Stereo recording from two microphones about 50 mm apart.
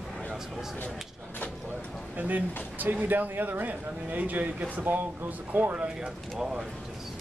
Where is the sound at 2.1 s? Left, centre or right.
Right.